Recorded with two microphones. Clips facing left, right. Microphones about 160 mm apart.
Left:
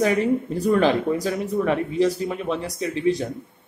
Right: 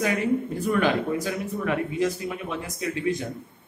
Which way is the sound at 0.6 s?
35° left (ahead or behind).